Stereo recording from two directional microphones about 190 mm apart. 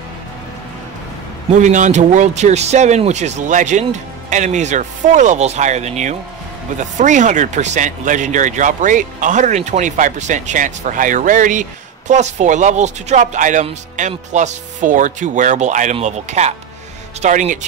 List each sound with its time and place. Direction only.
1.5 s speech: 40° right (ahead or behind)